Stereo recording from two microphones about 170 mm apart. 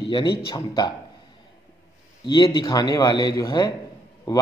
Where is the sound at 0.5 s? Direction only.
25° left (ahead or behind).